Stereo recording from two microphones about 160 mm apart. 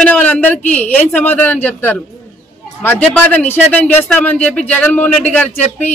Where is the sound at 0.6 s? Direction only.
50° left (ahead or behind).